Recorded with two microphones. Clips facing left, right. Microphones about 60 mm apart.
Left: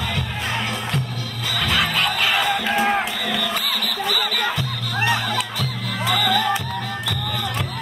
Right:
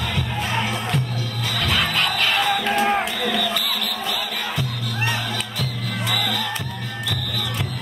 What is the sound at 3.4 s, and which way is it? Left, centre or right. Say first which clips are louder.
Music: even; left.